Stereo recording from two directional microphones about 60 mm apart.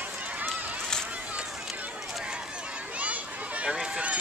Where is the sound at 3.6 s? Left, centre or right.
Centre.